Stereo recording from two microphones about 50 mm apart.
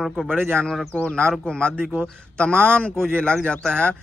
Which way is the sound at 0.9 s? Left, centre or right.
Left.